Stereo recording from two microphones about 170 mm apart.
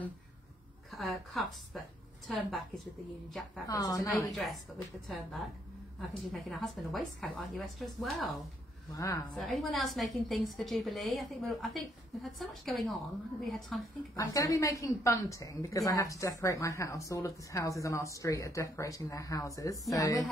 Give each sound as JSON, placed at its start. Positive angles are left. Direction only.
{"t": 0.9, "sound": "a woman's voice", "side_deg": 0}
{"t": 3.6, "sound": "a woman's voice", "side_deg": 20}
{"t": 5.0, "sound": "a woman's voice", "side_deg": 0}
{"t": 8.9, "sound": "a woman's voice", "side_deg": 20}
{"t": 9.3, "sound": "a woman's voice", "side_deg": 0}
{"t": 14.1, "sound": "a woman's voice", "side_deg": 20}